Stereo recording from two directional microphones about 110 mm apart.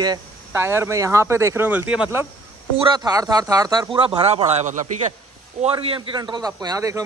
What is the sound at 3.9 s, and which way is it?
Speech, 55° right (ahead or behind).